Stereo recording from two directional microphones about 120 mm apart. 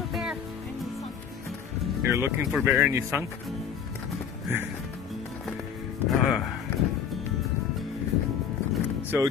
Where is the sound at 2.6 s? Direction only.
15° right (ahead or behind).